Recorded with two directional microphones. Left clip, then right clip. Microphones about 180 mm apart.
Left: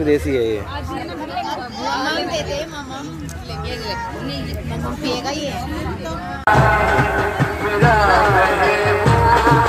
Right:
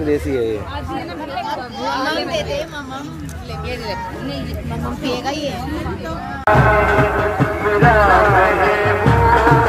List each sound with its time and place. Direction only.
0.3 s speech: 10° left (ahead or behind)
2.0 s speech: 25° right (ahead or behind)
6.4 s music: 70° left (ahead or behind)